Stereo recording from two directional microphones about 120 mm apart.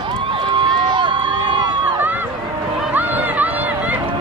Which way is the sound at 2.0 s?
15° right (ahead or behind).